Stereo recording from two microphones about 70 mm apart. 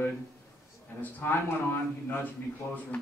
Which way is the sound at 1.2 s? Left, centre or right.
Left.